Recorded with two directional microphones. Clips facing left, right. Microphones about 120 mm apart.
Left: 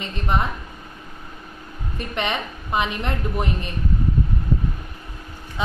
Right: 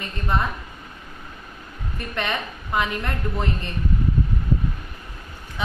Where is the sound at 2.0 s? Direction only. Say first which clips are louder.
Left 2 dB; 20° left (ahead or behind).